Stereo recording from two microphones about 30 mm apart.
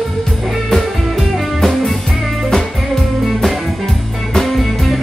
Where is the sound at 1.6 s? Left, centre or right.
Centre.